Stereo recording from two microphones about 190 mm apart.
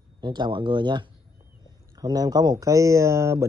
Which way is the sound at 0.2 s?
25° right (ahead or behind).